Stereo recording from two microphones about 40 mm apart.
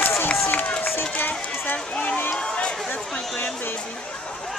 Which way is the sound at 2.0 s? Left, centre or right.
Left.